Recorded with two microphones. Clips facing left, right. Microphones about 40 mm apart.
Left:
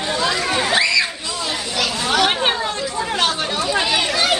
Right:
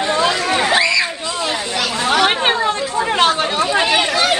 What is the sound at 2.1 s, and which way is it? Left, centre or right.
Chatter, right.